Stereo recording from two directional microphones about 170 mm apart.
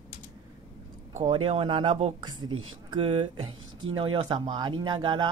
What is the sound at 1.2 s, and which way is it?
Speech, 35° right (ahead or behind).